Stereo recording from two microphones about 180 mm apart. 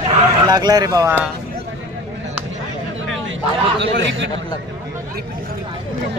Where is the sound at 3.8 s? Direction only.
90° right.